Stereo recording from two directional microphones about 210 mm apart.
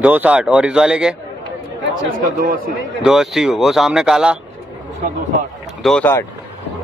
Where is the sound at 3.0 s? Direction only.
Centre (ahead or behind).